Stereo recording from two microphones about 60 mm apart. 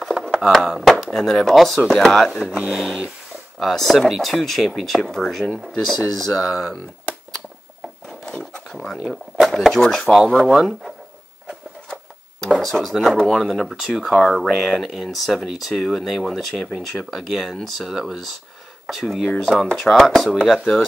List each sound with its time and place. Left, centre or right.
0.0 s a sound: centre
0.4 s speech: centre
2.4 s speech: centre
8.1 s wood: centre
8.7 s speech: centre
12.5 s speech: centre
20.4 s speech: centre